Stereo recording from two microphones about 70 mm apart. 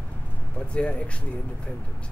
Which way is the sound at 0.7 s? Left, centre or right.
Centre.